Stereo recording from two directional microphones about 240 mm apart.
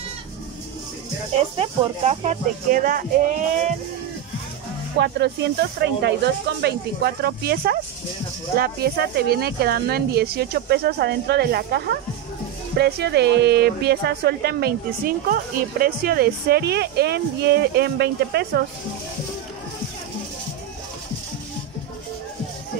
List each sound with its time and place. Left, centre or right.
1.3 s speech: right
4.9 s speech: right